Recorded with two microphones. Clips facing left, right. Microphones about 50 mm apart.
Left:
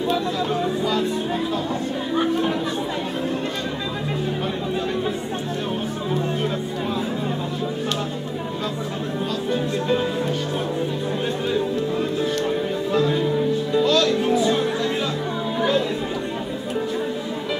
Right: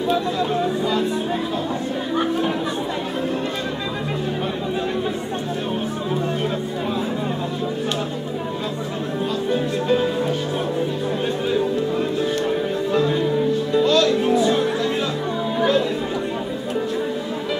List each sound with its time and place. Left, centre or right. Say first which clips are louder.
2.1 s chatter: even; centre
9.5 s music: right 2 dB; centre
11.5 s music: right 2 dB; centre